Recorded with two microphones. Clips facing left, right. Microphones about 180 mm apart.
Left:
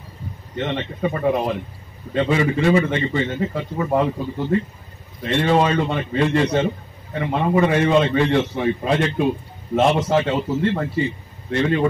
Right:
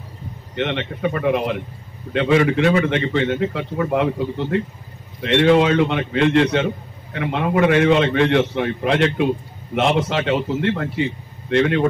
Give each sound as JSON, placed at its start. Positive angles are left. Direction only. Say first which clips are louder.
{"t": 0.6, "sound": "a man's voice", "louder": "right 1 dB", "side_deg": -70}